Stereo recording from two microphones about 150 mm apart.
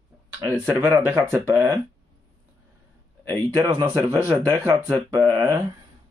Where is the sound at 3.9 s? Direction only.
10° right (ahead or behind).